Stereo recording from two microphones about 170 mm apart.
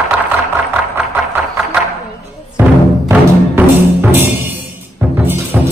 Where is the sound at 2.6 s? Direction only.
15° right (ahead or behind).